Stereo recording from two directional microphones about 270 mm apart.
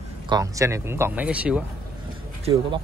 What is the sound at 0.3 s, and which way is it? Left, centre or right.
Speech, centre.